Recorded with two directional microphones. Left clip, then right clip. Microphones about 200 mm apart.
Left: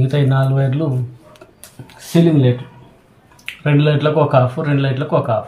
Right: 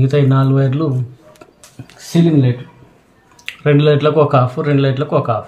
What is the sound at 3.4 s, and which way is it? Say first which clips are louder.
Speech: right 4 dB; 30° right (ahead or behind).